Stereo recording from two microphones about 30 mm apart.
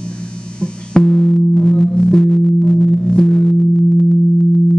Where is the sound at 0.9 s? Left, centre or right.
Left.